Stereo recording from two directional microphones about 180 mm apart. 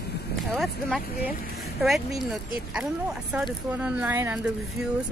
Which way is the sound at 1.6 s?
Centre (ahead or behind).